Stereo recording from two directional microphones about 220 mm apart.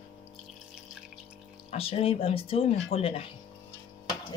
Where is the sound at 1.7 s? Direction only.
25° left (ahead or behind).